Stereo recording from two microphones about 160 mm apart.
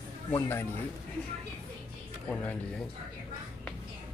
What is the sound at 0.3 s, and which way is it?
Speech, 15° left (ahead or behind).